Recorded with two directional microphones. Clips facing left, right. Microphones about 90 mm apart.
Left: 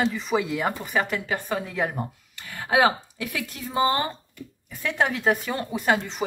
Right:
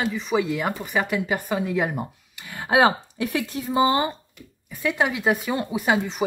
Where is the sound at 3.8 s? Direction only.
10° right (ahead or behind).